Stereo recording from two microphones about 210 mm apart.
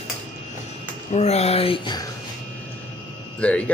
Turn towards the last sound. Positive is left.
turn(degrees=5)  # may be behind; listen again after turning